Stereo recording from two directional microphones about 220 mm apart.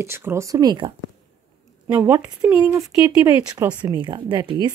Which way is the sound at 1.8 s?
10° right (ahead or behind).